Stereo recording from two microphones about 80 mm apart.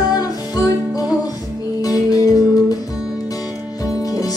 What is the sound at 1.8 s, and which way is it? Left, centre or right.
Music, left.